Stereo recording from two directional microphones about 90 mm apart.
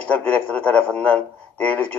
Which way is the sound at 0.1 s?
15° left (ahead or behind).